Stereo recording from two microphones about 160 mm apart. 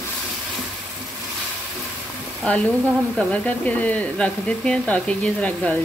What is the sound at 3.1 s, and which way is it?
Speech, 5° left (ahead or behind).